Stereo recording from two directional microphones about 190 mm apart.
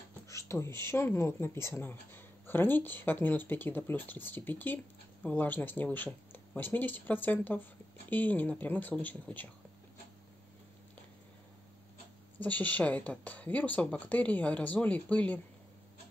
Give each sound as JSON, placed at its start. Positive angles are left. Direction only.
{"t": 0.3, "sound": "beatboxing", "side_deg": 15}
{"t": 0.7, "sound": "speech", "side_deg": 15}
{"t": 12.4, "sound": "speech", "side_deg": 10}